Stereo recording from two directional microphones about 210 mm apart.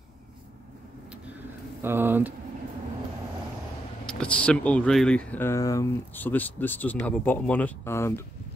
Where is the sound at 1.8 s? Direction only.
10° right (ahead or behind).